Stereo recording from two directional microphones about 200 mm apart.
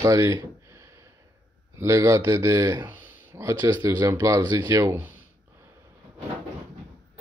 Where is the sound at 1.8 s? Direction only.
15° right (ahead or behind).